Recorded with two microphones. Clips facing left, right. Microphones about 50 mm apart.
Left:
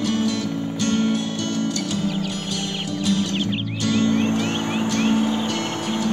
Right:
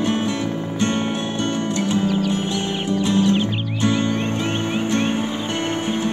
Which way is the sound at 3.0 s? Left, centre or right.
Right.